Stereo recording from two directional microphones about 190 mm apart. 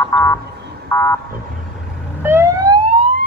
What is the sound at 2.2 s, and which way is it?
Police car, 15° right (ahead or behind).